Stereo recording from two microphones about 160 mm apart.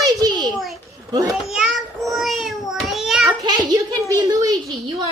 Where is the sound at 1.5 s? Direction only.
Centre (ahead or behind).